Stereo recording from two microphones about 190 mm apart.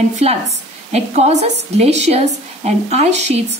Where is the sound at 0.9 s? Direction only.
35° right (ahead or behind).